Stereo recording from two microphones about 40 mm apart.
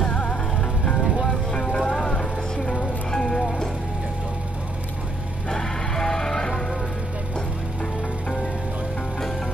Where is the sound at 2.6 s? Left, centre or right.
Left.